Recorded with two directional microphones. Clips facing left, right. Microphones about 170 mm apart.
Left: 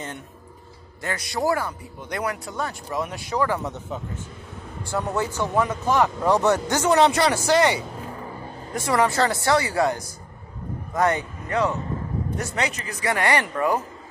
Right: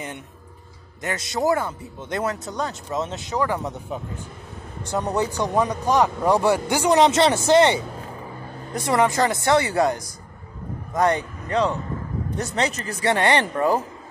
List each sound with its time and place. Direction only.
1.0 s speech: 20° right (ahead or behind)
8.7 s speech: 20° right (ahead or behind)
11.4 s speech: 20° right (ahead or behind)
12.6 s speech: 35° right (ahead or behind)